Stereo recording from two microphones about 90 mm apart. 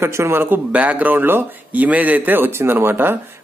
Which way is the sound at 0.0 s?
30° right (ahead or behind).